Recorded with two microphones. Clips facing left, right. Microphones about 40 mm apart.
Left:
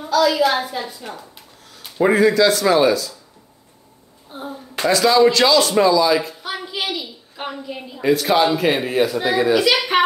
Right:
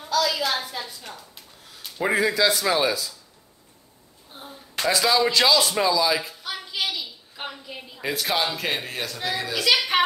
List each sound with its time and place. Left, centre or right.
0.0 s a woman's voice: centre
1.8 s a sound: centre
2.1 s speech: centre
4.3 s a woman's voice: centre
4.8 s speech: centre
6.3 s a woman's voice: centre